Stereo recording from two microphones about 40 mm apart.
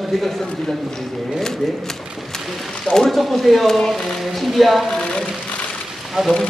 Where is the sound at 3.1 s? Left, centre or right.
Centre.